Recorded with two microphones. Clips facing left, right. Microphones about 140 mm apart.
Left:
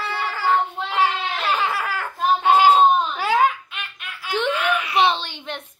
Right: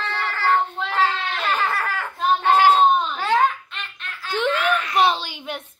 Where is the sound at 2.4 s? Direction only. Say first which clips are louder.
Left 1 dB; 10° left (ahead or behind).